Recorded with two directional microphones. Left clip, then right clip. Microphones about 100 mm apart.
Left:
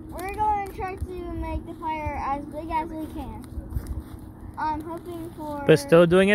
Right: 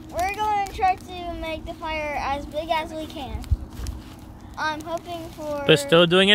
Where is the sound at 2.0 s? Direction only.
45° right (ahead or behind).